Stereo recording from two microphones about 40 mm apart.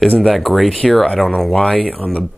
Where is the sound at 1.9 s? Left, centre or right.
Left.